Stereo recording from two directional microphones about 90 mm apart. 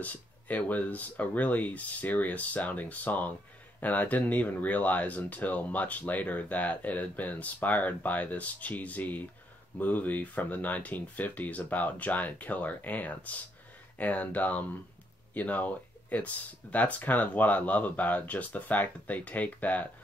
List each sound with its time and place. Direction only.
0.0 s speech: 15° left (ahead or behind)